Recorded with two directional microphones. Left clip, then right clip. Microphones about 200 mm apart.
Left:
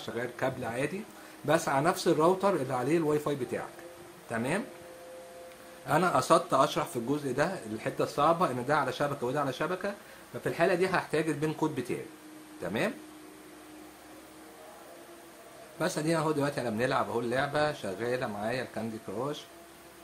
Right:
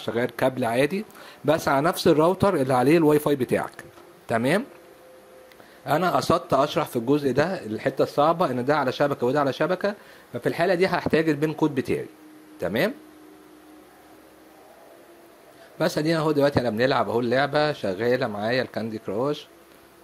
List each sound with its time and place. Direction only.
0.0 s speech: 40° right (ahead or behind)
5.9 s speech: 35° right (ahead or behind)
15.8 s speech: 35° right (ahead or behind)